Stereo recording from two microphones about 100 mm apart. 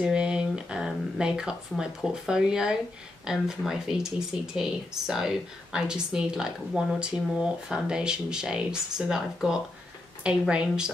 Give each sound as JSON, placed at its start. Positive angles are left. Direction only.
{"t": 0.0, "sound": "a woman's voice", "side_deg": -10}